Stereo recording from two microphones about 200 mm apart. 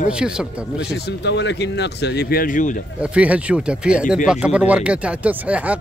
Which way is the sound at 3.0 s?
5° right (ahead or behind).